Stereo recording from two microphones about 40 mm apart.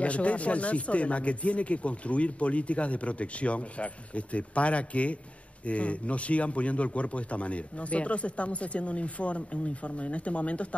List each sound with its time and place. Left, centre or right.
0.0 s a man's voice: left